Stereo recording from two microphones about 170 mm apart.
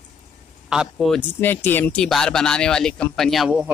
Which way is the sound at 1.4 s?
10° left (ahead or behind).